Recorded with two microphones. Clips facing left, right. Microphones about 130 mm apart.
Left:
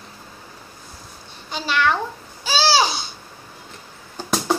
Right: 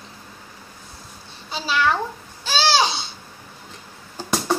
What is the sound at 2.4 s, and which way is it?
Babbling, 5° left (ahead or behind).